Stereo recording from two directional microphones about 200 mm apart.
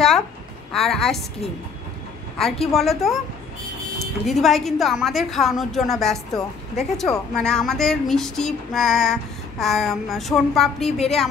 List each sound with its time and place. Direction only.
0.7 s speech: centre (ahead or behind)
2.3 s speech: centre (ahead or behind)
10.9 s a woman's voice: 30° left (ahead or behind)